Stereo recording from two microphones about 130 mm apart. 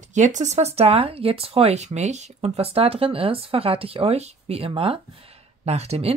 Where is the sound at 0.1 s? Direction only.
70° right (ahead or behind); by 4.9 s 45° right (ahead or behind).